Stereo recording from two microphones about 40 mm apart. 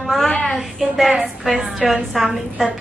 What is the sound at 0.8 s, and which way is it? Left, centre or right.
Speech, centre.